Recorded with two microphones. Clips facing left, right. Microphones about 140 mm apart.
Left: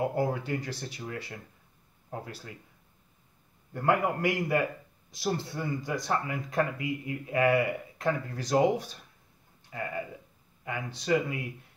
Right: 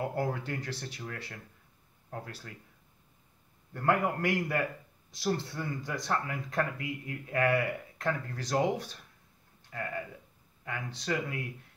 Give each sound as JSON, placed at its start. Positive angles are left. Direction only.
{"t": 0.0, "sound": "a man's voice", "side_deg": 10}
{"t": 1.0, "sound": "a man's voice", "side_deg": 15}
{"t": 3.7, "sound": "a man's voice", "side_deg": 10}
{"t": 11.1, "sound": "a man's voice", "side_deg": 10}